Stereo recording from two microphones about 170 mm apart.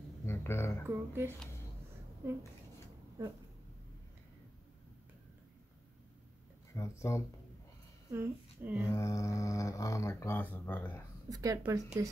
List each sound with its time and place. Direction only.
0.3 s speech: 15° left (ahead or behind)
0.8 s speech: 15° right (ahead or behind)
6.7 s speech: 15° left (ahead or behind)
8.1 s speech: 10° right (ahead or behind)
8.9 s speech: 20° left (ahead or behind)
11.2 s a woman's voice: 20° right (ahead or behind)